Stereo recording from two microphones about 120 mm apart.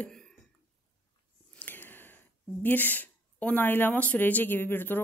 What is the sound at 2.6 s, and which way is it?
Speech, 15° left (ahead or behind).